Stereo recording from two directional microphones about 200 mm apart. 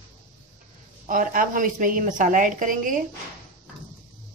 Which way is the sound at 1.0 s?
40° right (ahead or behind).